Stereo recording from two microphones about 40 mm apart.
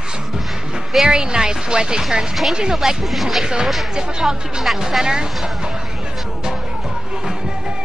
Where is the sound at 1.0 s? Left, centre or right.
Right.